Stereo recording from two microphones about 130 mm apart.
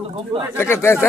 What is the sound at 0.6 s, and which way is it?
Speech, 20° left (ahead or behind).